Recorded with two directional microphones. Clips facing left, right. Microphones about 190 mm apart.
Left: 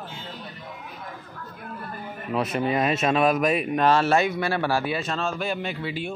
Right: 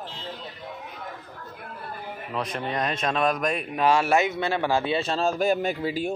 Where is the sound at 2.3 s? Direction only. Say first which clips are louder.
Left 5 dB; 5° left (ahead or behind).